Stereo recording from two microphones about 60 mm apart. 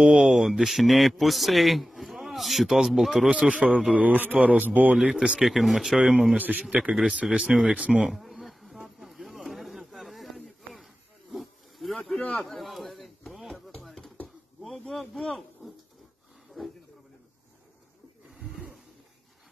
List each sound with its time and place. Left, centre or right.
0.0 s a man's voice: centre
3.3 s a man's voice: right
5.0 s speech: centre
5.4 s a man's voice: centre
6.3 s a man's voice: right
8.1 s insect: centre
8.8 s a sound: centre
11.3 s wild animals: centre
12.1 s a sound: centre
14.6 s speech: centre
18.3 s a sound: centre